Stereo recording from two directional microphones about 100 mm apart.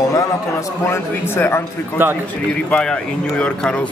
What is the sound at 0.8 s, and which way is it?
Speech, 25° left (ahead or behind).